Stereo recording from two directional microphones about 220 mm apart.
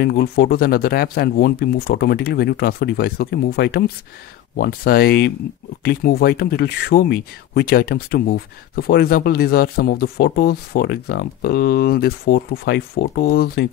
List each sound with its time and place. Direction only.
0.0 s speech: 45° left (ahead or behind)